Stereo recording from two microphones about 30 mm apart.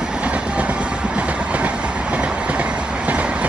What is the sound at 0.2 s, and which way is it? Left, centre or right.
Train, right.